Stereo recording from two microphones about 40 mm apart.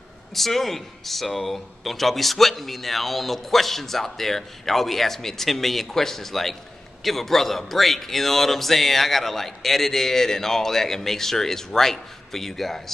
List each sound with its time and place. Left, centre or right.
0.3 s speech: centre